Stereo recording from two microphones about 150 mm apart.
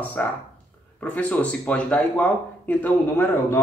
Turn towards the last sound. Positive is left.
turn(degrees=15)  # may be behind; listen again after turning